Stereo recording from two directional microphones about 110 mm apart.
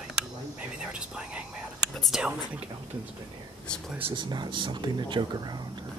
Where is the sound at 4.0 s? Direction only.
45° right (ahead or behind).